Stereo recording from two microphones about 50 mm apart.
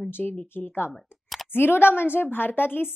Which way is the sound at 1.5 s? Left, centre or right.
Left.